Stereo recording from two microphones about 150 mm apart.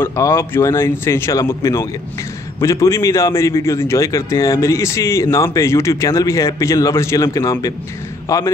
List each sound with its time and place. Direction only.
0.0 s a man's voice: 20° left (ahead or behind)